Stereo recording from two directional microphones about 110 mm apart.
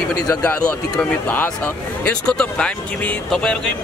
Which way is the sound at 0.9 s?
15° left (ahead or behind).